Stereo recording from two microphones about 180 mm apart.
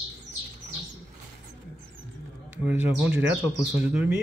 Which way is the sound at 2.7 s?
10° right (ahead or behind).